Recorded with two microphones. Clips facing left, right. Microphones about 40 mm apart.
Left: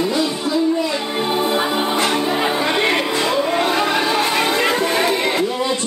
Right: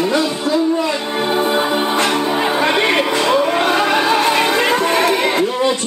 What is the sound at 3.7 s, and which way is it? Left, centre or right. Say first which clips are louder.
Music: right 3 dB; centre.